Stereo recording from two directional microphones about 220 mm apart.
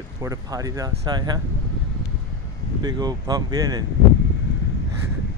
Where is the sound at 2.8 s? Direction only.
20° right (ahead or behind).